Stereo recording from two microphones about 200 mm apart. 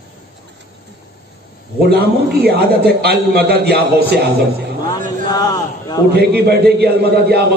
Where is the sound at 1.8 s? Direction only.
50° right (ahead or behind).